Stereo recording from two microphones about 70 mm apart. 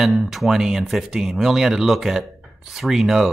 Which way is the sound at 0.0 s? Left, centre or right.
Centre.